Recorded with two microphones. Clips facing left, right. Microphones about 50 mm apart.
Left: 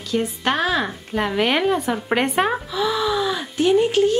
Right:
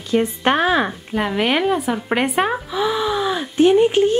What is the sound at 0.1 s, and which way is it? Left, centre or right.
Speech, right.